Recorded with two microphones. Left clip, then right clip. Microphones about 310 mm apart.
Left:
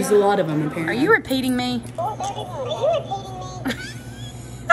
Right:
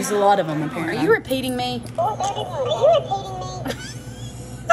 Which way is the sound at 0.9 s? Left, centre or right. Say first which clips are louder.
Left 1 dB; centre.